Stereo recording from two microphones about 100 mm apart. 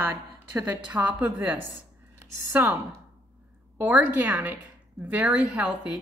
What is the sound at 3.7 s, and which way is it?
A woman's voice, 20° right (ahead or behind).